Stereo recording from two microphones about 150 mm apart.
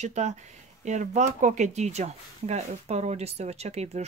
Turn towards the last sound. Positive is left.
turn(degrees=-45)  # may be behind; listen again after turning